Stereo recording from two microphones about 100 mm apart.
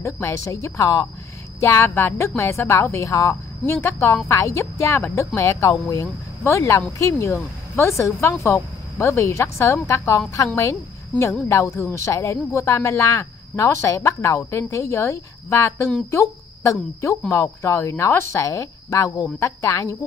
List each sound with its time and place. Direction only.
0.0 s speech: 30° left (ahead or behind)